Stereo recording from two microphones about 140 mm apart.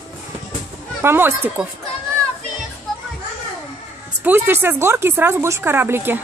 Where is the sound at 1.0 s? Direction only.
15° right (ahead or behind).